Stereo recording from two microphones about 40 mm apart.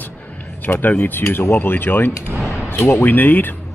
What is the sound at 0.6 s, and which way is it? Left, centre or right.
Speech, left.